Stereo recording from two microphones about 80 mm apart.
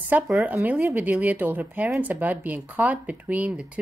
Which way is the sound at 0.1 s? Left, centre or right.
Right.